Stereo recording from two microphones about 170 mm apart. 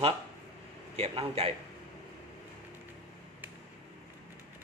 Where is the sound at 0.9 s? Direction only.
35° right (ahead or behind).